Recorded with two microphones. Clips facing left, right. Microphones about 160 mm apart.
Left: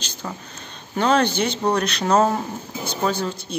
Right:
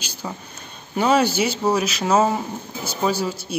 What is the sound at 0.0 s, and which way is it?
A woman's voice, 10° right (ahead or behind).